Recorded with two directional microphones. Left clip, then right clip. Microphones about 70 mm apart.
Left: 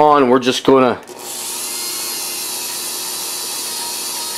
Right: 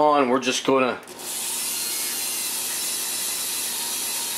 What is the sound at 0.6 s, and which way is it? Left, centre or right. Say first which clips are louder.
Speech: left 9 dB; left.